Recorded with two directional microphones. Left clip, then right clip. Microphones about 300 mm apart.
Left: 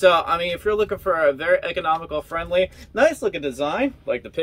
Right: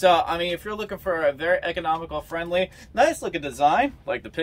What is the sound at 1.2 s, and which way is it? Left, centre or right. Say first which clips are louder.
Speech: left 3 dB; right.